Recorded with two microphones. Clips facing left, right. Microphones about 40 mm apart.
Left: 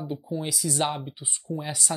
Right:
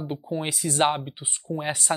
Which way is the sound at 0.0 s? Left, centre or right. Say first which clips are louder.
Right 2 dB; right.